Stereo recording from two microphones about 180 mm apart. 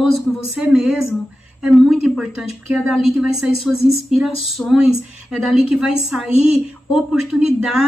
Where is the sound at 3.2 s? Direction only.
5° right (ahead or behind).